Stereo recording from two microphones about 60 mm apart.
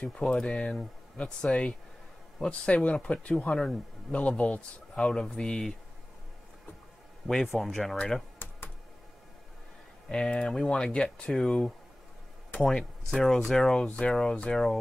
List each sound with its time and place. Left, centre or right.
0.0 s speech: centre
3.5 s speech: centre
4.1 s speech: centre
7.5 s speech: centre
10.0 s speech: centre
13.8 s speech: left